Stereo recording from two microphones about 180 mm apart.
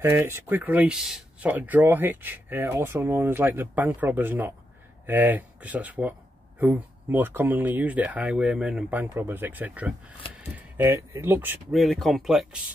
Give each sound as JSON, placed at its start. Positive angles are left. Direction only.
{"t": 0.0, "sound": "speech", "side_deg": -15}
{"t": 11.7, "sound": "speech", "side_deg": 0}